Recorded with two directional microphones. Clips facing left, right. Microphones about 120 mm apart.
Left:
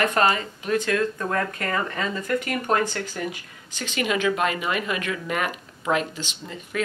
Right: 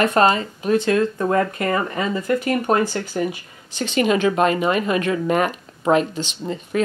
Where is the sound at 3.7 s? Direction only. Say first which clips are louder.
Right 7 dB; 30° right (ahead or behind).